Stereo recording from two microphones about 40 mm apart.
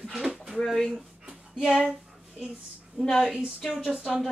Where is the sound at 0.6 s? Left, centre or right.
Centre.